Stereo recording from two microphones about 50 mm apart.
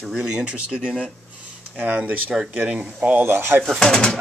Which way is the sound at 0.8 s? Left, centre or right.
Centre.